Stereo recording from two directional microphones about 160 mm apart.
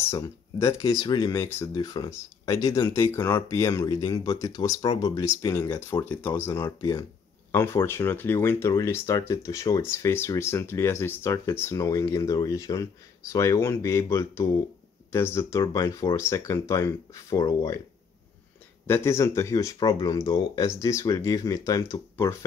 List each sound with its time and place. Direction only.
0.1 s speech: 20° left (ahead or behind)
18.9 s speech: 15° left (ahead or behind)